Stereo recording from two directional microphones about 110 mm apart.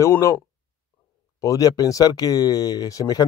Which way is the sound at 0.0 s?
25° left (ahead or behind).